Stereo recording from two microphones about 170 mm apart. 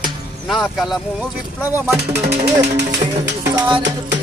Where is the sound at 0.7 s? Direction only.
Centre (ahead or behind).